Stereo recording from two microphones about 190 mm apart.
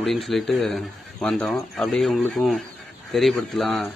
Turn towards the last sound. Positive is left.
turn(degrees=0)  # may be behind; listen again after turning